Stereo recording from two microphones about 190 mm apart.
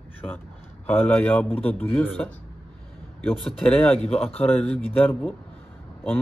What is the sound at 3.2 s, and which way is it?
A man's voice, 5° left (ahead or behind).